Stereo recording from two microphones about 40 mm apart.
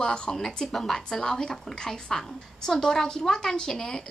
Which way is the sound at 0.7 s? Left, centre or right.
Centre.